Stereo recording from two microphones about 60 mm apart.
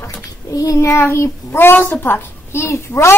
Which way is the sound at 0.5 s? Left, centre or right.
Left.